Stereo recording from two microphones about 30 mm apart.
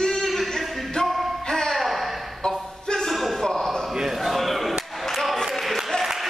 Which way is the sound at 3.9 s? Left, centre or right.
Centre.